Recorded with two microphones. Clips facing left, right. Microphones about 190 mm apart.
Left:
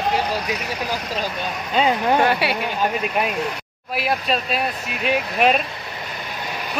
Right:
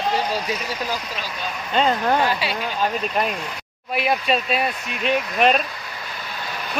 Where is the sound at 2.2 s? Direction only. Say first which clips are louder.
Left 3 dB; 60° left (ahead or behind).